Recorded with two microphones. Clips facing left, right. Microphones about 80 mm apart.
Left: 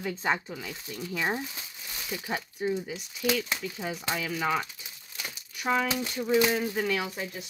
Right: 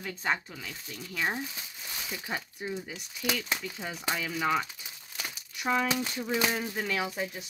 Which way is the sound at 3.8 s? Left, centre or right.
Centre.